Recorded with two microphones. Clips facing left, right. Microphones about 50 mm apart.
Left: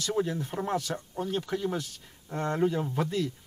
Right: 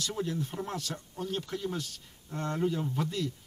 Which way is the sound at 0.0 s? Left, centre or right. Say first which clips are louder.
Left 4 dB; centre.